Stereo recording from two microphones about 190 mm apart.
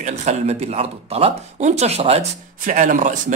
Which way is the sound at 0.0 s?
40° right (ahead or behind).